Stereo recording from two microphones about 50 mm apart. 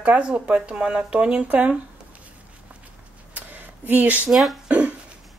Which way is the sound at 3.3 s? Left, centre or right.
Right.